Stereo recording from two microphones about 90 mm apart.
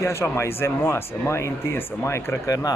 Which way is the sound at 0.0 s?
30° left (ahead or behind).